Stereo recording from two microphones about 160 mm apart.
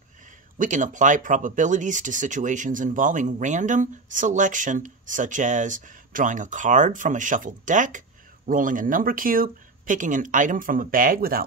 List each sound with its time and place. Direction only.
0.6 s speech: 55° right (ahead or behind)